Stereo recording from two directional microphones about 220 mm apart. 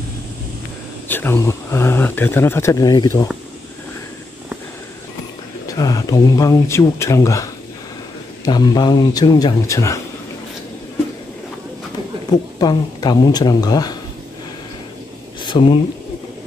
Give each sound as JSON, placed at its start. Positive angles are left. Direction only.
{"t": 1.0, "sound": "speech", "side_deg": 10}
{"t": 5.7, "sound": "speech", "side_deg": 15}
{"t": 8.5, "sound": "speech", "side_deg": 20}
{"t": 12.3, "sound": "speech", "side_deg": 20}
{"t": 15.4, "sound": "speech", "side_deg": 20}